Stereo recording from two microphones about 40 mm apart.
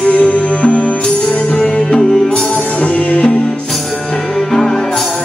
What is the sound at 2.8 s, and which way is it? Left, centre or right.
Music, left.